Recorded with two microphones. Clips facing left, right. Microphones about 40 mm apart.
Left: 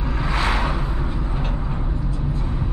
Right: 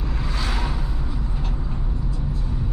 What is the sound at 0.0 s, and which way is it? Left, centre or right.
Vehicle, left.